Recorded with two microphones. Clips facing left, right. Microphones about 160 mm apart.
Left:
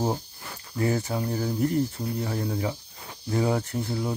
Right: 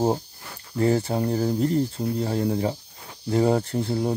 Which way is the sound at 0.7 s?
35° right (ahead or behind).